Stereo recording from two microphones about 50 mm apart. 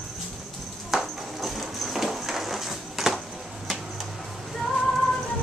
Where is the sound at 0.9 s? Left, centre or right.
Centre.